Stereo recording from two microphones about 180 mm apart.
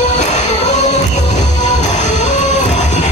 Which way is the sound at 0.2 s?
40° left (ahead or behind).